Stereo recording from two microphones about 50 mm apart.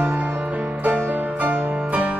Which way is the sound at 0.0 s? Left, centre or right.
Right.